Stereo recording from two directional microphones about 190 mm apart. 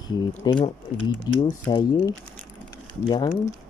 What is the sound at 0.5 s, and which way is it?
Brass instrument, 20° left (ahead or behind).